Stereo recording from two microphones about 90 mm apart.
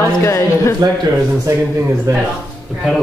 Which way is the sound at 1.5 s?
30° right (ahead or behind).